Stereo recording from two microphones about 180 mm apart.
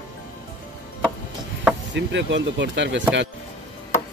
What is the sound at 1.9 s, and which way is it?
Speech, 85° right.